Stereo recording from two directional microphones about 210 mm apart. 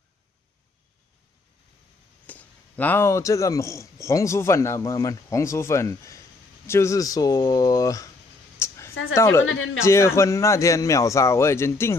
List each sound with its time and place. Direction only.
2.2 s a man's voice: 10° left (ahead or behind)
8.5 s a sound: 15° left (ahead or behind)
9.1 s a man's voice: 15° left (ahead or behind)